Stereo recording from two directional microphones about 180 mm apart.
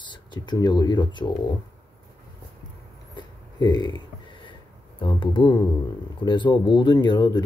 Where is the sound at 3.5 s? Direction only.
25° left (ahead or behind).